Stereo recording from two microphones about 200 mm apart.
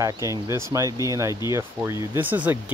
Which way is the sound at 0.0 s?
15° right (ahead or behind).